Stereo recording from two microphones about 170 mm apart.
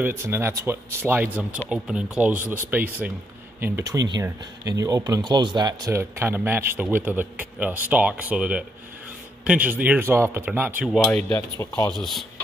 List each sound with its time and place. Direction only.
0.0 s speech: 15° right (ahead or behind)
11.5 s speech: 20° left (ahead or behind)
11.9 s speech: centre (ahead or behind)